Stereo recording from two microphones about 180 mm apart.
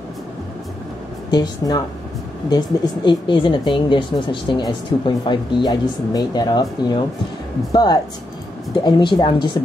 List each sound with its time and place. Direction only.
1.3 s speech: 20° left (ahead or behind)